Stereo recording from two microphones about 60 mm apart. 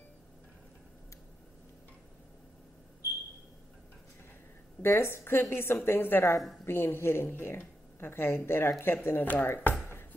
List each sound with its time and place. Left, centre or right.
4.8 s a woman's voice: left